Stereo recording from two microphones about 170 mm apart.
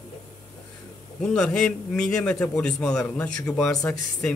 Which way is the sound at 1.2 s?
5° left (ahead or behind).